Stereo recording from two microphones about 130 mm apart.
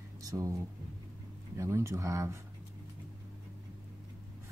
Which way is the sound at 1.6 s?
20° right (ahead or behind).